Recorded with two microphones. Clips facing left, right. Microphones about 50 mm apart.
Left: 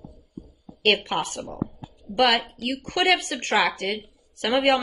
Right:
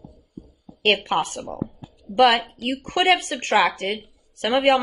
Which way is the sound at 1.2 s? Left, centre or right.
Right.